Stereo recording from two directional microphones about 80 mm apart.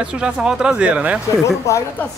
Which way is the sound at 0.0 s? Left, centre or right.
Centre.